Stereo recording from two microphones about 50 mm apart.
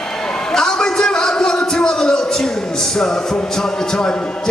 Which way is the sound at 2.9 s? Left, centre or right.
Centre.